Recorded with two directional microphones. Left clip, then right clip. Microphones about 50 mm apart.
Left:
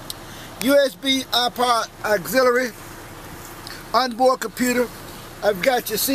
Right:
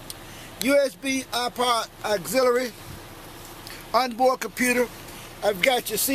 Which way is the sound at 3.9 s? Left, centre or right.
Right.